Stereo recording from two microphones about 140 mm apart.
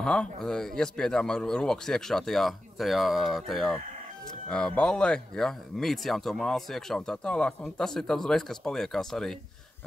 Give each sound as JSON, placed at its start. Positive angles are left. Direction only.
{"t": 0.0, "sound": "speech", "side_deg": 5}